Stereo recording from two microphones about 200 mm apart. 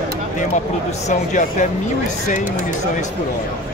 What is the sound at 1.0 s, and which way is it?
Speech, 40° left (ahead or behind).